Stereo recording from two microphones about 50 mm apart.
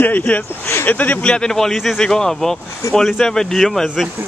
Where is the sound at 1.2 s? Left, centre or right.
Centre.